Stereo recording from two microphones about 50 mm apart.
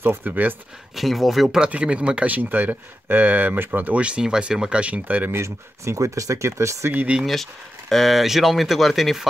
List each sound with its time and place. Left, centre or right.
0.2 s speech: right
0.9 s speech: centre
1.6 s speech: right
2.2 s speech: right
3.8 s speech: right
5.3 s speech: right
7.9 s speech: centre